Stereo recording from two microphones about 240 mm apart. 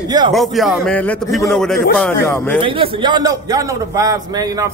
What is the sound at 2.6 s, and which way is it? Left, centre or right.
A man's voice, right.